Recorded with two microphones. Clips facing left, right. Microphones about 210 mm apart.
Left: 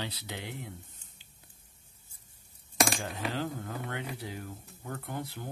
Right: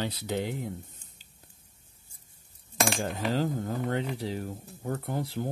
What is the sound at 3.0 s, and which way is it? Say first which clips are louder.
Speech: right 6 dB; 40° right (ahead or behind).